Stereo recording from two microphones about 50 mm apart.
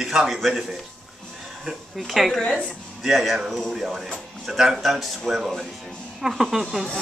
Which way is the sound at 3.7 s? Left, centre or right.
Centre.